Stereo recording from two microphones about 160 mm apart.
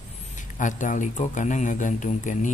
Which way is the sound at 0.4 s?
50° left (ahead or behind).